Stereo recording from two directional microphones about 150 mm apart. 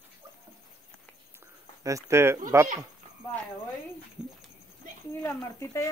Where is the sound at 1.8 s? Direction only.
20° right (ahead or behind).